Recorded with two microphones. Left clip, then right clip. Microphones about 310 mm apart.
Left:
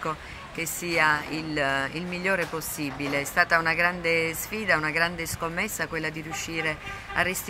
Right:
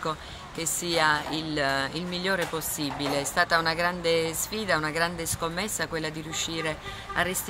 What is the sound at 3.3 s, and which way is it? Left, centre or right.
Speech, centre.